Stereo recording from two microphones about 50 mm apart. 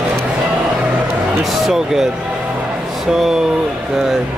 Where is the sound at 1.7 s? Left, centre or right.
Centre.